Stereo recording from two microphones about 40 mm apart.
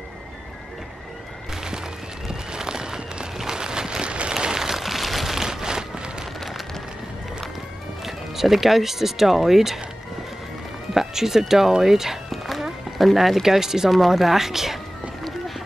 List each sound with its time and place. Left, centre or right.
2.2 s a sound: centre
4.4 s a sound: centre
8.0 s speech: centre
11.0 s speech: centre
12.3 s horse: centre
13.0 s speech: centre